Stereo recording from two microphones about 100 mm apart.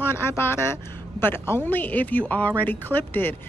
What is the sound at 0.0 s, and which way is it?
A woman's voice, 25° left (ahead or behind).